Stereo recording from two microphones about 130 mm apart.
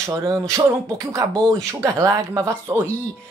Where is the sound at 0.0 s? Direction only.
20° right (ahead or behind).